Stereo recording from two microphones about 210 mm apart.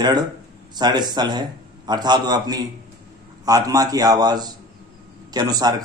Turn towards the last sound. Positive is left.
turn(degrees=-20)  # may be behind; listen again after turning